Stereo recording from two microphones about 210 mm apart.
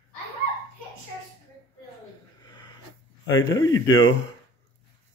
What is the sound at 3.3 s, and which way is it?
Speech, 15° left (ahead or behind).